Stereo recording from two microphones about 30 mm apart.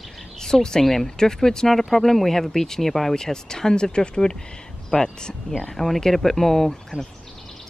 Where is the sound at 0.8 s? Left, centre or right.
Centre.